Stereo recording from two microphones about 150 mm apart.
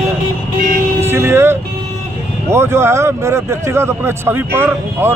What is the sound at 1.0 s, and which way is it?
Music, 15° right (ahead or behind).